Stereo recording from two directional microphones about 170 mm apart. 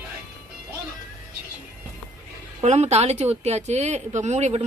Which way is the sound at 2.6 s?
40° right (ahead or behind).